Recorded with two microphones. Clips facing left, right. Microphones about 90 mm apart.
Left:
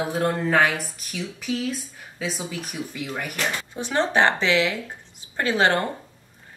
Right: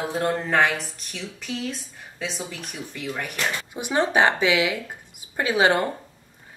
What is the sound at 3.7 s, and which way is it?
A woman's voice, 15° right (ahead or behind).